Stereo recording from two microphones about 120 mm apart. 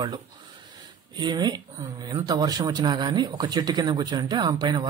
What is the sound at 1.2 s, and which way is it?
Speech, 35° right (ahead or behind).